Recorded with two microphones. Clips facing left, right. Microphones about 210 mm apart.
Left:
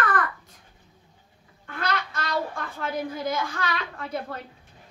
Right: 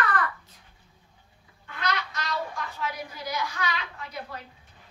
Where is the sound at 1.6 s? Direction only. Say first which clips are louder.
Left 2 dB; 50° left (ahead or behind).